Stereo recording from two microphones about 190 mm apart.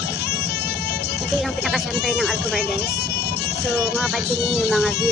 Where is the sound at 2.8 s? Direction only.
60° left (ahead or behind).